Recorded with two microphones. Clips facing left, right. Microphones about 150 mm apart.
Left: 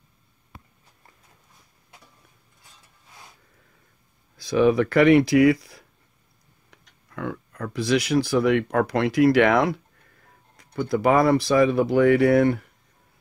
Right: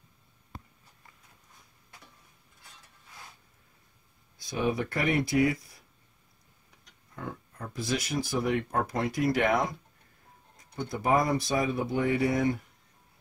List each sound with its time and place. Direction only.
4.4 s speech: 90° left; by 12.6 s 70° left (ahead or behind)